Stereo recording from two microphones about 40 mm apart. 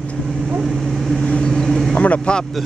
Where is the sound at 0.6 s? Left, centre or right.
Centre.